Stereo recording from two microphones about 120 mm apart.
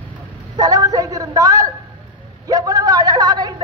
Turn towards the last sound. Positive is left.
turn(degrees=-35)  # may be behind; listen again after turning